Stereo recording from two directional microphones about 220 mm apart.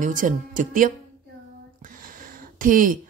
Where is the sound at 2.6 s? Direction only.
40° right (ahead or behind).